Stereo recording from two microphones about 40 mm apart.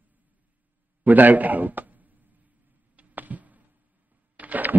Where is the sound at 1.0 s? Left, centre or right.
Right.